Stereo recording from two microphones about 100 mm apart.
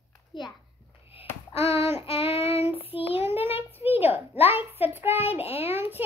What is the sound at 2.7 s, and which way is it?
Child singing, 70° left (ahead or behind).